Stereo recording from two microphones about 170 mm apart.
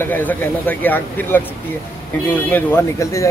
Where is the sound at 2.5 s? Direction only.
10° left (ahead or behind).